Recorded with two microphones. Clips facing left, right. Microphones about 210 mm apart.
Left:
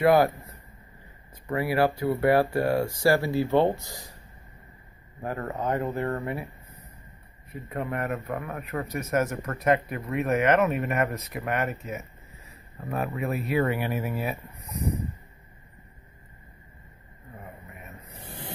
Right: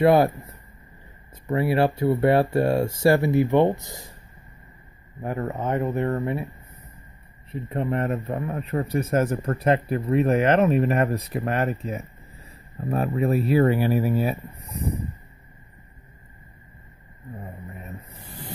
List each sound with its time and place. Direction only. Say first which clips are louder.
0.0 s speech: right 3 dB; 25° right (ahead or behind)
5.2 s speech: right 3 dB; 20° right (ahead or behind)
7.7 s speech: right 5 dB; 25° right (ahead or behind)